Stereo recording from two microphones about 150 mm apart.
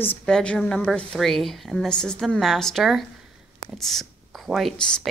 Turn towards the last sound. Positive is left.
turn(degrees=5)  # may be behind; listen again after turning